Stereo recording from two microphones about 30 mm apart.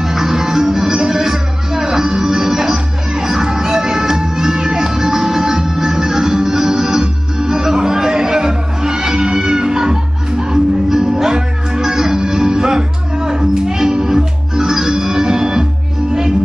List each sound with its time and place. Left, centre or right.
0.0 s music: centre